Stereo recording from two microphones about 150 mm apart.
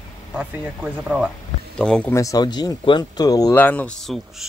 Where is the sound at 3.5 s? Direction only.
10° left (ahead or behind).